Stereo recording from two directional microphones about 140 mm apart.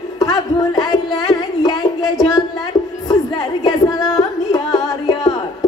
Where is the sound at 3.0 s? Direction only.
30° left (ahead or behind).